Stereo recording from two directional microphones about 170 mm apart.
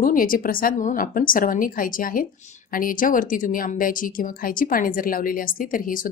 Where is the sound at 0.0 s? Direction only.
55° left (ahead or behind).